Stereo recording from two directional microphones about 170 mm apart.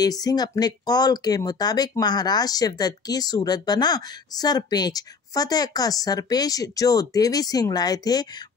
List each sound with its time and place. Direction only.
0.0 s speech: 20° left (ahead or behind)